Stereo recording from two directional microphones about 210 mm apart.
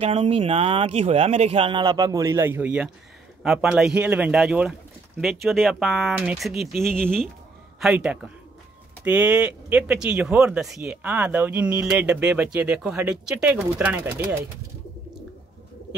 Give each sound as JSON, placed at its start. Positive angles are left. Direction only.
{"t": 0.0, "sound": "speech", "side_deg": -25}